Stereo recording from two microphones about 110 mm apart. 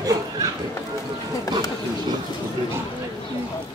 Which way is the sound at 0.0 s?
30° right (ahead or behind).